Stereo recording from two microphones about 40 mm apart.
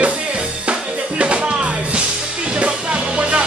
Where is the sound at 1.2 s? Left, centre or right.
Right.